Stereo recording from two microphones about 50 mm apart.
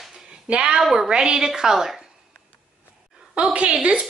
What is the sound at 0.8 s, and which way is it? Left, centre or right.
A woman's voice, centre.